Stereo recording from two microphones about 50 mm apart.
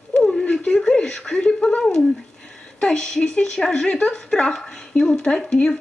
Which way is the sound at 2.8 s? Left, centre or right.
Centre.